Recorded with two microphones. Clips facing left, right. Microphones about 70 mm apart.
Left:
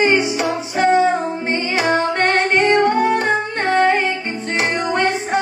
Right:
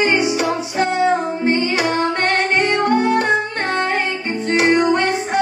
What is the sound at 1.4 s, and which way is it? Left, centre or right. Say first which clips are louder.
Music: right 3 dB; left.